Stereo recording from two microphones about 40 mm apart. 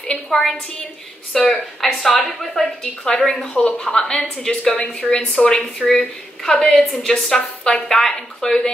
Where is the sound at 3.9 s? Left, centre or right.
Centre.